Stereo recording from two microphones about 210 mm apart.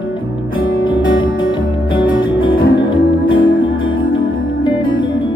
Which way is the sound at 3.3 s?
65° left (ahead or behind).